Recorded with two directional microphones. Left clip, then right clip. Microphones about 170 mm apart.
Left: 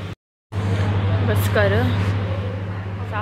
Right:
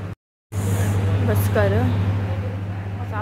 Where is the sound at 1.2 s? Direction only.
15° right (ahead or behind).